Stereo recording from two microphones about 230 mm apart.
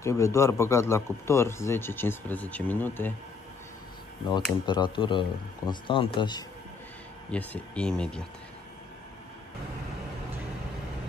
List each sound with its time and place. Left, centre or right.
0.0 s a man's voice: centre
4.3 s speech: centre
7.2 s speech: centre